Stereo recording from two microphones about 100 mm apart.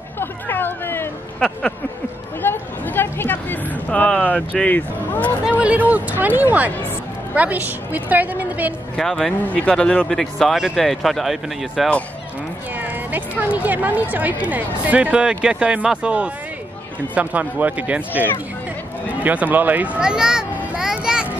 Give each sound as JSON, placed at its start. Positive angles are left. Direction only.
{"t": 0.2, "sound": "hubbub", "side_deg": 20}
{"t": 2.4, "sound": "a sound", "side_deg": 20}
{"t": 5.6, "sound": "speech", "side_deg": -15}
{"t": 8.9, "sound": "speech", "side_deg": 5}
{"t": 12.7, "sound": "speech", "side_deg": -15}
{"t": 19.2, "sound": "speech", "side_deg": -15}
{"t": 20.5, "sound": "a sound", "side_deg": -10}